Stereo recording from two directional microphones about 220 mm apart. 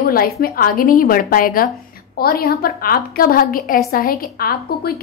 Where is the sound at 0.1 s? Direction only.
40° left (ahead or behind).